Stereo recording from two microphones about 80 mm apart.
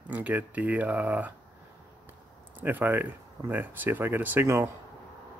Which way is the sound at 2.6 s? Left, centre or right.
Right.